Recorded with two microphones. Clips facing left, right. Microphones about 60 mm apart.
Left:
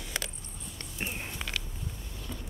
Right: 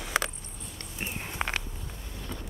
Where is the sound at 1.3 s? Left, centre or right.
Right.